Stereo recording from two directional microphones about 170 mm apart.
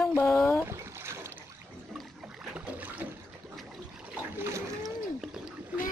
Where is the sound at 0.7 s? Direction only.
15° right (ahead or behind).